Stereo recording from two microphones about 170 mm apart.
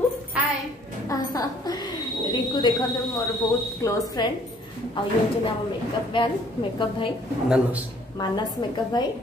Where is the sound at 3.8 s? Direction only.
20° left (ahead or behind).